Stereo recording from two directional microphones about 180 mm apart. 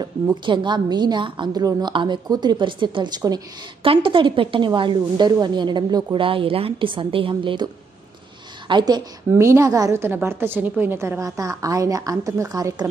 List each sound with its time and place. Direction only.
0.0 s a woman's voice: 25° right (ahead or behind)